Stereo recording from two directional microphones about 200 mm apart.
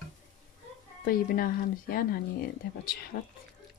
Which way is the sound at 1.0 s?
45° left (ahead or behind).